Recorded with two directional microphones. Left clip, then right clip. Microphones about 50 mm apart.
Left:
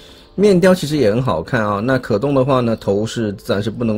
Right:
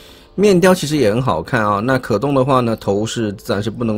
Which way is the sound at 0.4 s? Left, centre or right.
Right.